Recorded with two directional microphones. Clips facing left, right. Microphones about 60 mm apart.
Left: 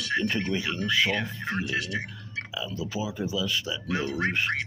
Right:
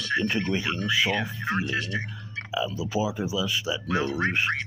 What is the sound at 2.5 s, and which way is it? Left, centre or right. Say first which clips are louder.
Speech: right 6 dB; centre.